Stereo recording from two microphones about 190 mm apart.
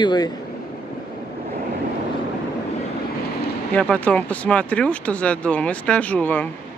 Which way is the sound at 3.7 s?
5° left (ahead or behind).